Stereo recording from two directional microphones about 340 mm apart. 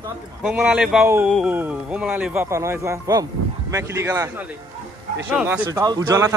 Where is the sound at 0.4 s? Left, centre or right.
Centre.